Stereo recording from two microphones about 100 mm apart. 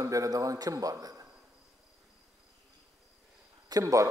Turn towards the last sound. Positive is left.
turn(degrees=-35)  # may be behind; listen again after turning